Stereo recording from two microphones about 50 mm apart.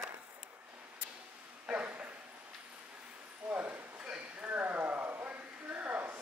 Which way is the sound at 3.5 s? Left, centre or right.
Right.